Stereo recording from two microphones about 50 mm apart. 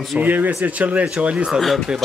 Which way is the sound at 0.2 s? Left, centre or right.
Right.